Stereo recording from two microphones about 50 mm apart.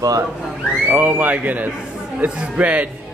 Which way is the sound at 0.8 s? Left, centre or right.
Right.